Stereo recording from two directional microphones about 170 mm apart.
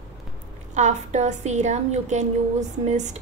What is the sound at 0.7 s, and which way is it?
A woman's voice, 45° right (ahead or behind).